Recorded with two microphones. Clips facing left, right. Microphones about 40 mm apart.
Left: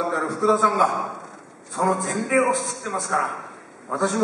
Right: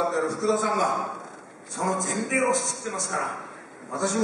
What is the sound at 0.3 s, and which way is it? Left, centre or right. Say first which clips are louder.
A man's voice: left 5 dB; centre.